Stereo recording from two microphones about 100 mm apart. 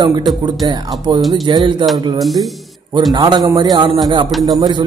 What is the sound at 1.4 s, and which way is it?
Speech, 50° right (ahead or behind).